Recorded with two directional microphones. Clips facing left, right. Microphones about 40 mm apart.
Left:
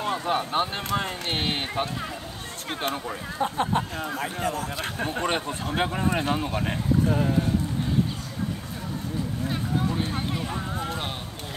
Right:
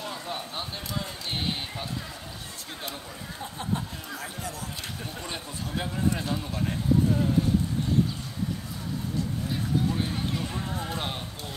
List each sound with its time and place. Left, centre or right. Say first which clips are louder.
0.0 s speech: left 9 dB; left
7.1 s speech: left 2 dB; left
9.5 s speech: left 1 dB; centre